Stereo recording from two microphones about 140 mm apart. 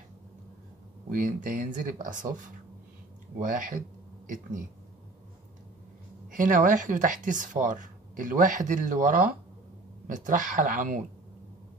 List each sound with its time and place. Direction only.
1.1 s speech: 70° right (ahead or behind)
6.3 s speech: 70° right (ahead or behind)